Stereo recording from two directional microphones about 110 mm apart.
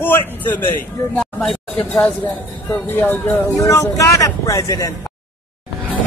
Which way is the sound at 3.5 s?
30° left (ahead or behind).